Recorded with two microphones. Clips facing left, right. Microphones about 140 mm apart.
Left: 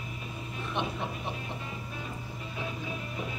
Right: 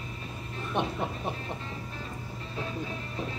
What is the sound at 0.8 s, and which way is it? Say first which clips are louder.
Speech: right 3 dB; 45° right (ahead or behind).